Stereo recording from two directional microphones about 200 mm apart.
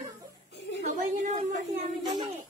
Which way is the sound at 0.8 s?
40° right (ahead or behind).